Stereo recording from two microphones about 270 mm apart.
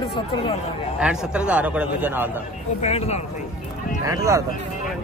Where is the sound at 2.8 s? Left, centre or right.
Left.